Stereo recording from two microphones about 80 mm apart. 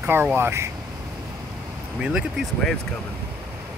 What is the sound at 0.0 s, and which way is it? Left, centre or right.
Speech, right.